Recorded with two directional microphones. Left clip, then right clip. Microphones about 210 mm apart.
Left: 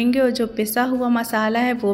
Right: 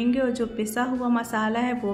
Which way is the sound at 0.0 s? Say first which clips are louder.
Left 6 dB; 20° left (ahead or behind).